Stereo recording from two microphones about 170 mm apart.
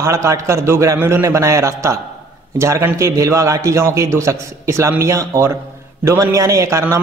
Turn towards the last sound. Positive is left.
turn(degrees=-15)  # may be behind; listen again after turning